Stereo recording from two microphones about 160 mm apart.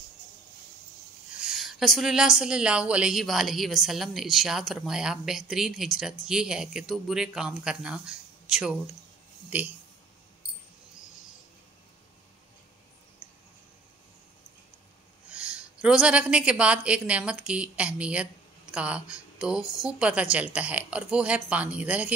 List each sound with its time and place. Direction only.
1.3 s a woman's voice: 5° right (ahead or behind)
15.3 s speech: 5° right (ahead or behind)
19.6 s a woman's voice: 20° left (ahead or behind)
19.9 s speech: 5° right (ahead or behind)